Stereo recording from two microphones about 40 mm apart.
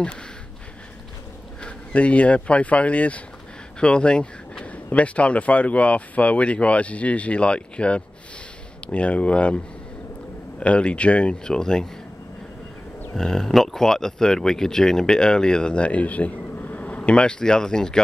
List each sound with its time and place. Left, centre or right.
2.0 s speech: left
3.8 s a sound: left
4.8 s speech: left
10.6 s speech: left
11.4 s speech: centre
13.1 s speech: centre